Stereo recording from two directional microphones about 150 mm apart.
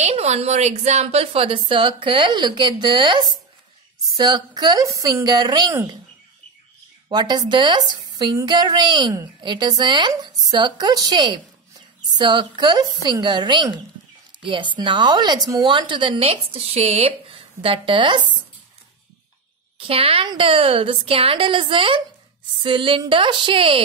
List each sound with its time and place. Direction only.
0.0 s speech: 45° right (ahead or behind); by 3.2 s 30° right (ahead or behind)
4.2 s a woman's voice: 25° right (ahead or behind)
7.1 s a woman's voice: 25° right (ahead or behind)
19.8 s speech: 35° right (ahead or behind)